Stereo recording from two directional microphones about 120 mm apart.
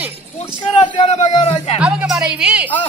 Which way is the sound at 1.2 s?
65° left (ahead or behind).